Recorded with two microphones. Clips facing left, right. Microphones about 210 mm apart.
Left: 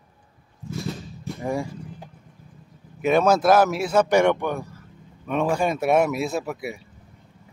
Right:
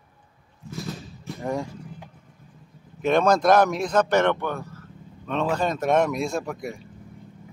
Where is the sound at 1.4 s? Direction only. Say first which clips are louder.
Left 1 dB; 10° left (ahead or behind).